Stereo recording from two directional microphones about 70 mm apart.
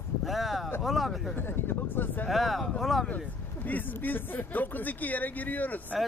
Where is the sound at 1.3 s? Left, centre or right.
Left.